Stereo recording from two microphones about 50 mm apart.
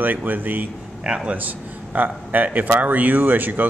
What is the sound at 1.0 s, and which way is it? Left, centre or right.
Speech, centre.